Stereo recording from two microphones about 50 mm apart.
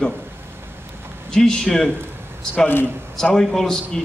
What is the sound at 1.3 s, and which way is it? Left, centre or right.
Speech, centre.